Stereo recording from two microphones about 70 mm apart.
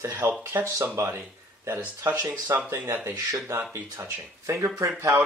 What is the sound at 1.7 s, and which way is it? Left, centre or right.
Speech, right.